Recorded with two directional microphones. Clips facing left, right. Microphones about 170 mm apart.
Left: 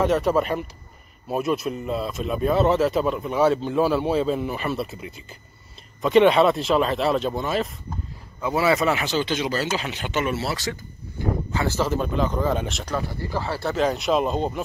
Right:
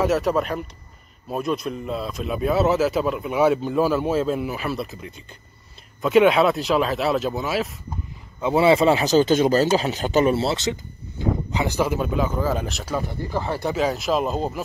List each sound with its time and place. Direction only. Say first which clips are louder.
0.0 s speech: even; centre (ahead or behind)
8.4 s speech: right 4 dB; 25° right (ahead or behind)
9.0 s speech: right 8 dB; 40° right (ahead or behind); by 13.0 s 5° right (ahead or behind)
13.1 s speech: right 2 dB; 15° right (ahead or behind)
13.7 s speech: left 2 dB; centre (ahead or behind)